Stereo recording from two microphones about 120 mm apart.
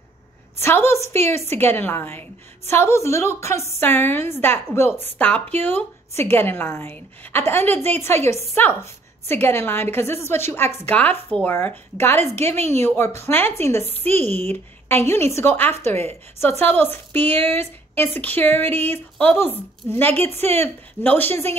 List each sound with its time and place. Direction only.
0.6 s a woman's voice: 20° left (ahead or behind)